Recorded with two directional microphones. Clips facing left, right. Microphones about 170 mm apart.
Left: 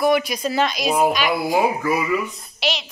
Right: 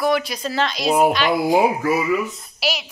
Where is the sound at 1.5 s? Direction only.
10° right (ahead or behind).